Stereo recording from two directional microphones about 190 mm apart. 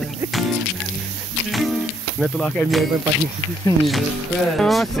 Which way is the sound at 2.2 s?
Centre (ahead or behind).